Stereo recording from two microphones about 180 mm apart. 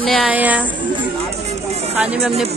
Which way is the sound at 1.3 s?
35° right (ahead or behind).